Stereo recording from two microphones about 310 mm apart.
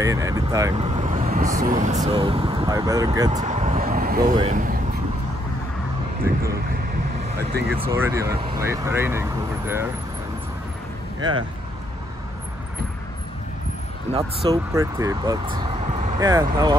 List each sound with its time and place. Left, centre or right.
0.0 s speech: centre
3.3 s vehicle: right
4.3 s speech: right
7.8 s speech: centre
11.1 s speech: centre
14.1 s speech: centre